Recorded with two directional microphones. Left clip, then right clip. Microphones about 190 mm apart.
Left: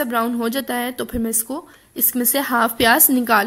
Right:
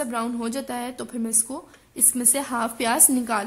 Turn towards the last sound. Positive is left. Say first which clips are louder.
# left 8 dB
turn(degrees=20)  # may be behind; listen again after turning